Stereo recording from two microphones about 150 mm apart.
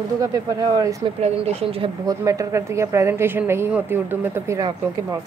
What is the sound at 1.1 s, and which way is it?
Speech, 45° right (ahead or behind).